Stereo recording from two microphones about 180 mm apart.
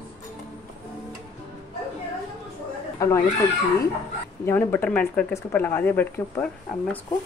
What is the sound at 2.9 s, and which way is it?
Speech, 15° left (ahead or behind).